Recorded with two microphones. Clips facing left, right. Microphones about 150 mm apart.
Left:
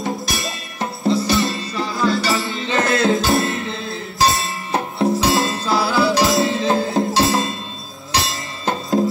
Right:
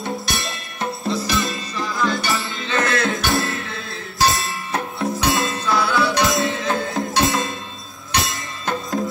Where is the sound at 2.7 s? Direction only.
25° left (ahead or behind).